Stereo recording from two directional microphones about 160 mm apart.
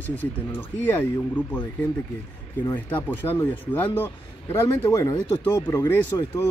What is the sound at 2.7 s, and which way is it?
A man's voice, 10° left (ahead or behind).